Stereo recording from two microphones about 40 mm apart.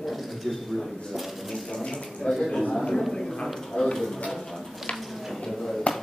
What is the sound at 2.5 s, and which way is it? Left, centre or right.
Speech, centre.